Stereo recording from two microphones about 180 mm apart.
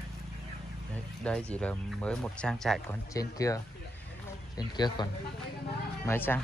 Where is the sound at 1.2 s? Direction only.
5° left (ahead or behind).